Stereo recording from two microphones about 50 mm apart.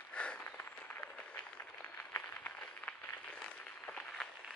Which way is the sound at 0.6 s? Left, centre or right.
Left.